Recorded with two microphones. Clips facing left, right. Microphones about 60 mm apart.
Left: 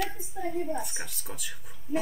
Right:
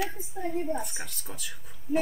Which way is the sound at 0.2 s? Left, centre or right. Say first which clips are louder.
Even; centre.